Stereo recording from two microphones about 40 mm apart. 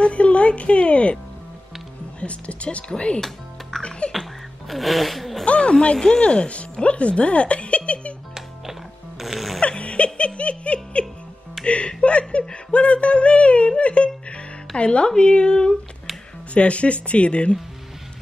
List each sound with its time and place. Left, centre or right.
0.0 s speech: left
3.7 s music: centre
4.1 s a sound: centre
5.4 s speech: left
5.9 s speech: centre
6.2 s speech: left
9.2 s music: centre
9.6 s giggle: left
11.6 s music: left
12.0 s a sound: left
14.8 s speech: left
16.5 s speech: left